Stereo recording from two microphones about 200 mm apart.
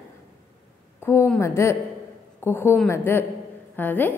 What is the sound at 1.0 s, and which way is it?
A woman's voice, 10° left (ahead or behind).